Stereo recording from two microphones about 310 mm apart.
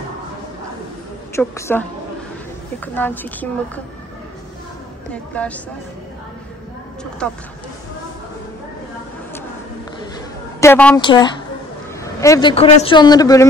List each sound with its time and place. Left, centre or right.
1.3 s a woman's voice: centre
5.1 s a woman's voice: centre
10.6 s a woman's voice: centre